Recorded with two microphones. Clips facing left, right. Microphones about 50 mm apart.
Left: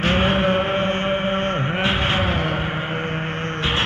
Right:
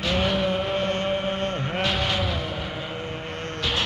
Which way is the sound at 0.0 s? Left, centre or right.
Left.